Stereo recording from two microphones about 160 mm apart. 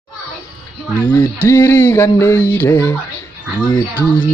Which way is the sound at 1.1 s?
15° left (ahead or behind).